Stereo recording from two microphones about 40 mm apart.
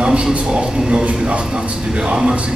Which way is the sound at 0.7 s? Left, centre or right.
Right.